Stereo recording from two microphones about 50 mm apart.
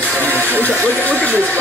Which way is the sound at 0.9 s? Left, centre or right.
Left.